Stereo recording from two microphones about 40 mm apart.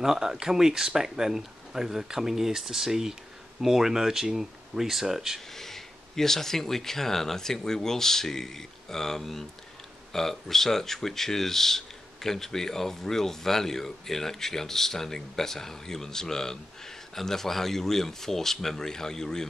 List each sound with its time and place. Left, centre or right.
0.0 s speech: centre
5.5 s speech: centre